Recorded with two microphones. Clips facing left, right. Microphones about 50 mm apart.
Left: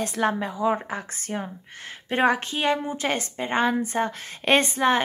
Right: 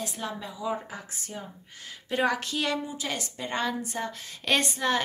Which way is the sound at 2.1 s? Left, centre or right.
Left.